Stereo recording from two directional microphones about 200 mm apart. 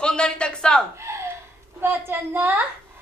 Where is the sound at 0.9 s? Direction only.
15° right (ahead or behind).